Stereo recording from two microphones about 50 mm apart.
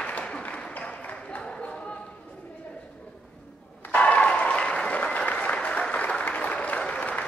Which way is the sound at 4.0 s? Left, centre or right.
Left.